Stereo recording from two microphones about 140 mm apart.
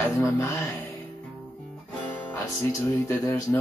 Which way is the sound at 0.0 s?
20° left (ahead or behind).